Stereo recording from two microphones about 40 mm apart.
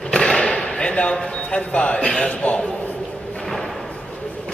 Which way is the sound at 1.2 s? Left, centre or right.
Left.